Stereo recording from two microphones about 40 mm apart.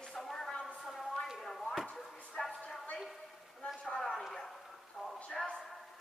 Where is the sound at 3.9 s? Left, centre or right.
Centre.